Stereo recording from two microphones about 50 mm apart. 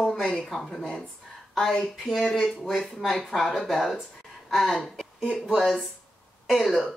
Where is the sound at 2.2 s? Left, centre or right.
Centre.